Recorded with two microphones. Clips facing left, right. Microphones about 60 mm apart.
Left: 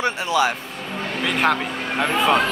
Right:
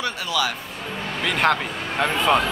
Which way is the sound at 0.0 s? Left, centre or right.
Left.